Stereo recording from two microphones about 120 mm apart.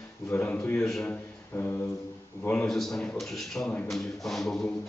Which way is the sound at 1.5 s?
20° left (ahead or behind).